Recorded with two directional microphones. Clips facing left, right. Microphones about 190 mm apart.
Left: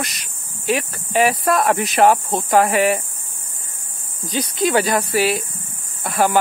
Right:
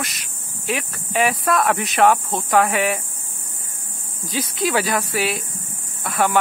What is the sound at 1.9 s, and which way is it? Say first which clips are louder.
Speech: left 1 dB; 30° left (ahead or behind).